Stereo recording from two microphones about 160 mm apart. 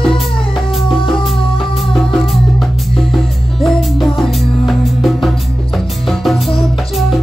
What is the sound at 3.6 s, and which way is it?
Music, centre (ahead or behind).